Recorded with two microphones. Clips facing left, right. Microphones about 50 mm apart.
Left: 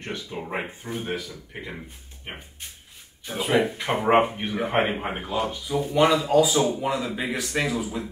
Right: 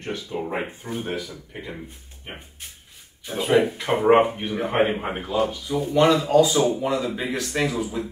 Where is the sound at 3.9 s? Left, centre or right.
Centre.